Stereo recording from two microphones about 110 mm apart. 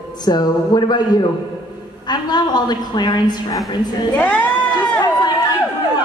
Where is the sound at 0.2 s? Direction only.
40° left (ahead or behind).